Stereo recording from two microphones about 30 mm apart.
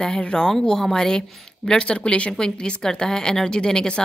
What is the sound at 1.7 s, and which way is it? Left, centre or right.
Speech, left.